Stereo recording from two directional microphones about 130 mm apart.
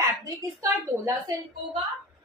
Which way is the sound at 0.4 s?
25° right (ahead or behind).